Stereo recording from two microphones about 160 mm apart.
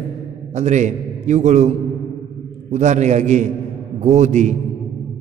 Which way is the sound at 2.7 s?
45° right (ahead or behind).